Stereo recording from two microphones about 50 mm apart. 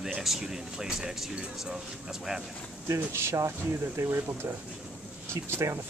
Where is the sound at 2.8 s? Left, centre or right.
Right.